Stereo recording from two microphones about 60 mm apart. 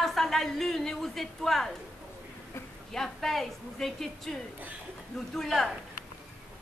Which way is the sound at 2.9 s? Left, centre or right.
Centre.